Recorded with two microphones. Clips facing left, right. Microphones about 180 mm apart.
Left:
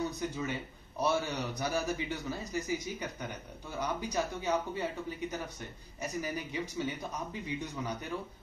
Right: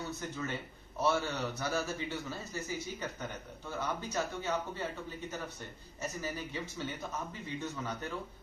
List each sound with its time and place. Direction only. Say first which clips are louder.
0.2 s a man's voice: left 3 dB; 15° left (ahead or behind)
5.9 s a man's voice: left 2 dB; 15° left (ahead or behind)